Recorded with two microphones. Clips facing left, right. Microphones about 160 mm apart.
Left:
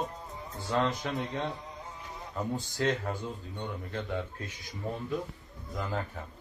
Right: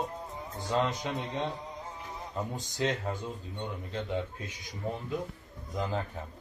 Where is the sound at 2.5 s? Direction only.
15° right (ahead or behind).